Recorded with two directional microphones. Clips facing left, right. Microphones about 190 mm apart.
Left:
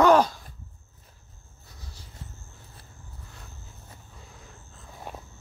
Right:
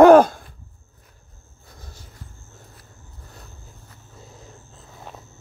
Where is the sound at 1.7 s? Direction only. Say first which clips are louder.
Right 4 dB; 50° right (ahead or behind).